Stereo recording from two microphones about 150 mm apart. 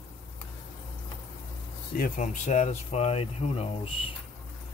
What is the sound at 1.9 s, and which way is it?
Speech, 60° left (ahead or behind).